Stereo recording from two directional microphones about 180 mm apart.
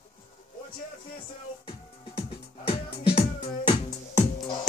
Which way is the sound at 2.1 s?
30° left (ahead or behind).